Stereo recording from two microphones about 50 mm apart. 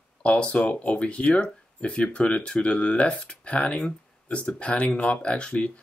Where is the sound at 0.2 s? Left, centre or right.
Left.